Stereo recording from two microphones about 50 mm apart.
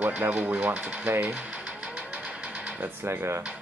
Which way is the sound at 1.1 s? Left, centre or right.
Right.